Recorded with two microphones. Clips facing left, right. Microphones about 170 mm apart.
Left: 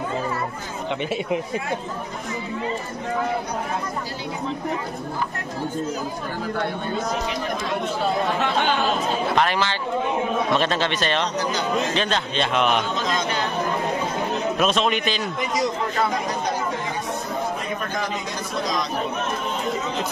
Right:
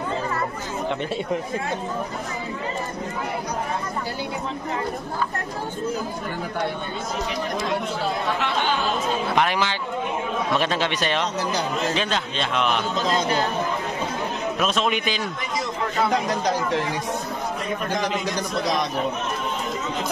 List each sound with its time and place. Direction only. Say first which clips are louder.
9.3 s a man's voice: even; 10° right (ahead or behind)
12.9 s speech: right 2 dB; 35° right (ahead or behind)
14.6 s a man's voice: left 1 dB; 5° right (ahead or behind)